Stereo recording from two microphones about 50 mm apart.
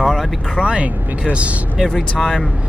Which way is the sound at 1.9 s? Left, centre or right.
Centre.